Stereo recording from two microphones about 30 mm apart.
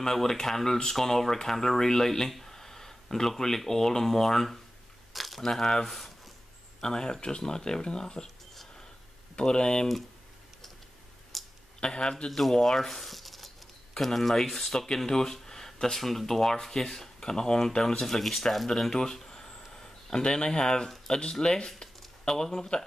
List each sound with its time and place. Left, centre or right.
0.0 s speech: centre
5.1 s crumpling: centre
5.4 s speech: centre
5.9 s a sound: centre
6.8 s speech: left
9.3 s speech: left
11.3 s a sound: centre
11.8 s speech: left
12.3 s speech: centre
12.6 s a sound: centre
13.9 s speech: centre
18.7 s a sound: centre
20.2 s speech: left